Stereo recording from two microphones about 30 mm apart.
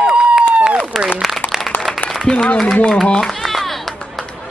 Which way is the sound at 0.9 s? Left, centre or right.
Centre.